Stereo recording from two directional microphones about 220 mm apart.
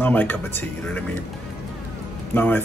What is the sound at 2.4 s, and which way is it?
Speech, 10° left (ahead or behind).